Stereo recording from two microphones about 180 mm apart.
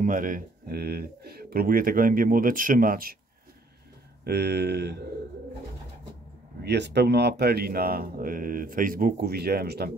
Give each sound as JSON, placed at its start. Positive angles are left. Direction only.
{"t": 0.0, "sound": "speech", "side_deg": -50}
{"t": 4.2, "sound": "speech", "side_deg": -65}
{"t": 6.6, "sound": "speech", "side_deg": -70}